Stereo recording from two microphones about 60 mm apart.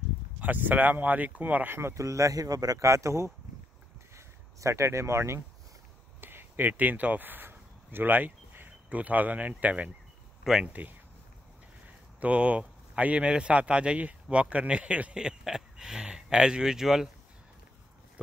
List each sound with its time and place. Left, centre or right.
0.4 s speech: right
2.0 s speech: right
4.6 s speech: right
6.2 s speech: right
12.2 s speech: right